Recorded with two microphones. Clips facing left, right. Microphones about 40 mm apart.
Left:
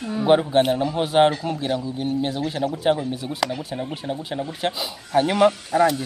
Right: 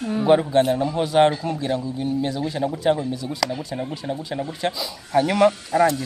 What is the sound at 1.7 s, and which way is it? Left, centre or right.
Speech, left.